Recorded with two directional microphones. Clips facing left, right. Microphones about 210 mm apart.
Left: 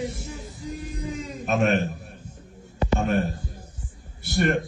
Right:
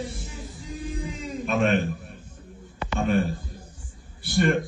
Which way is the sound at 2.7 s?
45° left (ahead or behind).